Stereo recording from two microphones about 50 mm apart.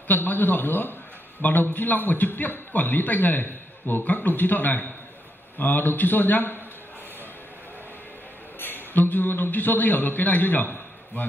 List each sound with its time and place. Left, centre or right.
0.1 s a man's voice: left
8.5 s a man's voice: left